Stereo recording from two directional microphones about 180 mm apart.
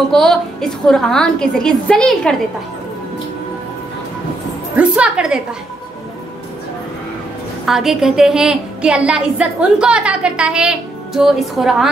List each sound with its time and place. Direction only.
0.1 s a woman's voice: centre (ahead or behind)
4.7 s a woman's voice: 5° right (ahead or behind)
7.6 s a woman's voice: centre (ahead or behind)